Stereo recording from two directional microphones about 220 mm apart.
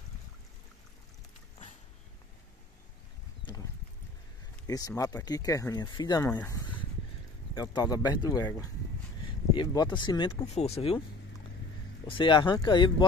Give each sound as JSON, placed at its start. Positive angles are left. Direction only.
{"t": 4.6, "sound": "speech", "side_deg": 15}
{"t": 12.1, "sound": "speech", "side_deg": 20}